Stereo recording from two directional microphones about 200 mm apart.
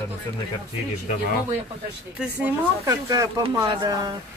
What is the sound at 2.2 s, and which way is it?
Speech, 10° right (ahead or behind).